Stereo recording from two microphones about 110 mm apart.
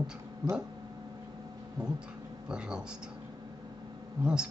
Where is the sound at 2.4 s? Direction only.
5° right (ahead or behind).